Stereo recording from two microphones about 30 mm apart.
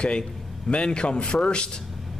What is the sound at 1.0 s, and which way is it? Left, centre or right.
Speech, left.